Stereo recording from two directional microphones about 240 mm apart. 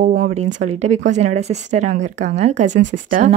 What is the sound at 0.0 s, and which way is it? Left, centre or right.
Speech, right.